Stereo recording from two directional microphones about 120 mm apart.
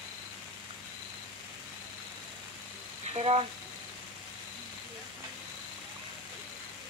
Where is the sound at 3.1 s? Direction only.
60° right (ahead or behind).